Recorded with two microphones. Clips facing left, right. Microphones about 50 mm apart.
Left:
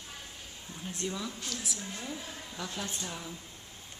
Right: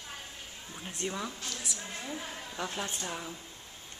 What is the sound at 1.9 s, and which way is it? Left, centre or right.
Speech, centre.